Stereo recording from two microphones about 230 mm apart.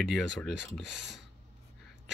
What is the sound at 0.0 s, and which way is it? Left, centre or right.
Speech, centre.